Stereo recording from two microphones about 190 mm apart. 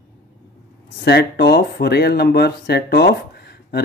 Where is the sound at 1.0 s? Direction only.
60° left (ahead or behind).